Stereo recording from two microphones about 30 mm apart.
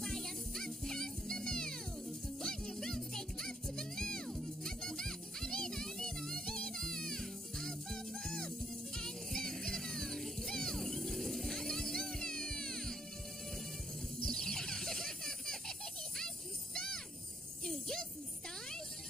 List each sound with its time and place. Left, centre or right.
0.0 s music: centre
14.2 s a sound: centre
16.7 s music: left